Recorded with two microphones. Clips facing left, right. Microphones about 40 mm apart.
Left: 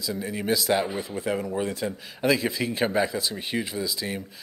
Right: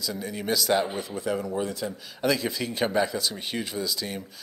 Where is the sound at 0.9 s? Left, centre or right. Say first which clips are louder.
Left 1 dB; left.